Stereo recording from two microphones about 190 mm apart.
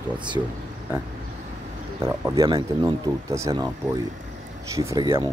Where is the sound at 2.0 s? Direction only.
15° right (ahead or behind).